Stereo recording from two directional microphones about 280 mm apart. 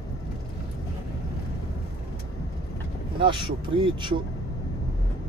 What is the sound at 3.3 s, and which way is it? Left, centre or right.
Speech, centre.